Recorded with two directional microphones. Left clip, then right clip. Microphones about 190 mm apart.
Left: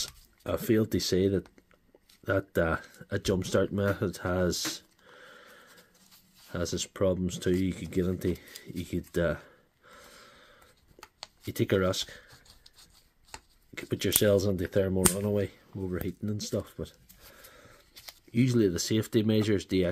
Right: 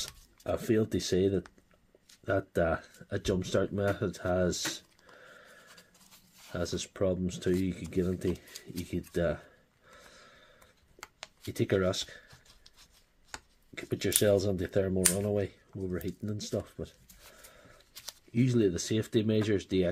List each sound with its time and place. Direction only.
0.0 s speech: 30° left (ahead or behind)
6.5 s speech: 30° left (ahead or behind)
8.8 s a sound: 30° left (ahead or behind)
11.4 s speech: 25° left (ahead or behind)
13.7 s speech: 30° left (ahead or behind)
18.3 s speech: 30° left (ahead or behind)